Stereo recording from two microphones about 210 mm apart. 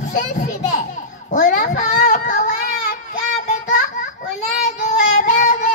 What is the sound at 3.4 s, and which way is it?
Child singing, 35° left (ahead or behind).